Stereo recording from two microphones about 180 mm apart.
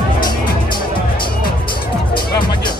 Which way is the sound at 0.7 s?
25° left (ahead or behind).